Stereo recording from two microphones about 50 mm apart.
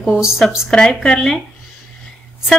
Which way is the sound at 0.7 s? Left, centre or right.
Centre.